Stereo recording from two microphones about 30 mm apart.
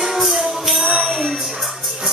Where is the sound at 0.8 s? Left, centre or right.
Right.